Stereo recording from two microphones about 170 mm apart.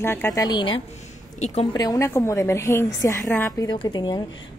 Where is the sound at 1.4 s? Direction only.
40° left (ahead or behind).